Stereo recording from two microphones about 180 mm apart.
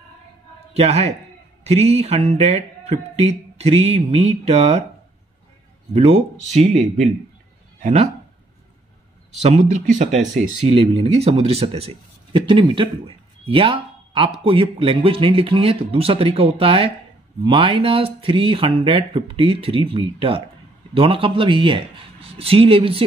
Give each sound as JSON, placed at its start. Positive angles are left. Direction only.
{"t": 0.7, "sound": "speech", "side_deg": -35}
{"t": 5.9, "sound": "speech", "side_deg": -35}
{"t": 9.4, "sound": "speech", "side_deg": -40}